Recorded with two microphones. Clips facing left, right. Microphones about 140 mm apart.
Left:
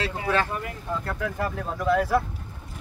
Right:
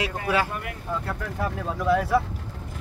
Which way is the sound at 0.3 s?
10° right (ahead or behind).